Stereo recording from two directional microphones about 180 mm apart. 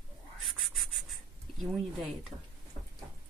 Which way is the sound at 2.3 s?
40° right (ahead or behind).